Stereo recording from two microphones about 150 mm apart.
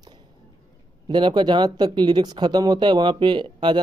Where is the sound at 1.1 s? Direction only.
30° right (ahead or behind).